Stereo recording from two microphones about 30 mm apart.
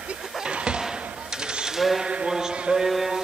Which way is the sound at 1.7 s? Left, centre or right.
Centre.